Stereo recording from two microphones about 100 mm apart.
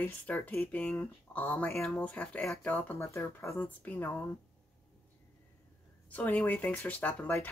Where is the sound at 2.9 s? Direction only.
30° left (ahead or behind).